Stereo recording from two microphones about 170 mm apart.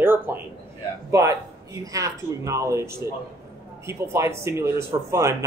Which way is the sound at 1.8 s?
20° right (ahead or behind).